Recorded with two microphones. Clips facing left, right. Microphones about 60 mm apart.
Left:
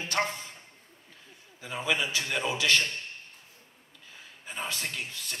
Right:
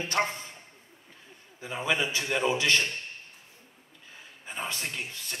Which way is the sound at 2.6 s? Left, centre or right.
Right.